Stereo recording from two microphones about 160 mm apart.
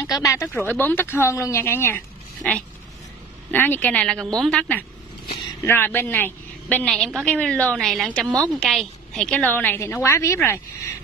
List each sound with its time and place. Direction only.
0.0 s a woman's voice: 20° left (ahead or behind)
3.5 s a woman's voice: 10° left (ahead or behind)